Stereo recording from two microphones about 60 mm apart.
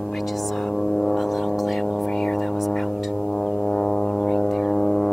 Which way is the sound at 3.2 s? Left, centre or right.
Left.